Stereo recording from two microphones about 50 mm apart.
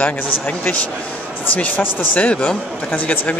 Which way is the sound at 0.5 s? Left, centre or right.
Left.